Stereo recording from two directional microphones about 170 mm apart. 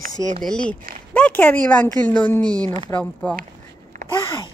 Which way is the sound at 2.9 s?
5° left (ahead or behind).